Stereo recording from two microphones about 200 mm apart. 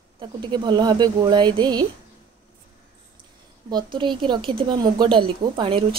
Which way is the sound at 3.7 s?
25° right (ahead or behind).